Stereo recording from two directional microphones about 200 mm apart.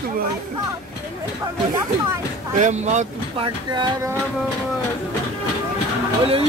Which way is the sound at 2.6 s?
35° right (ahead or behind).